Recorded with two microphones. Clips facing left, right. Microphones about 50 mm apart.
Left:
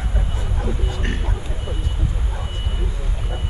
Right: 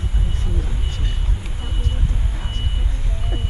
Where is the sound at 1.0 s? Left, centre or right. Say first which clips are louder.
Left 6 dB; left.